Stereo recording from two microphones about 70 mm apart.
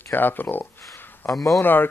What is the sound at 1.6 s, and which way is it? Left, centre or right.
Speech, left.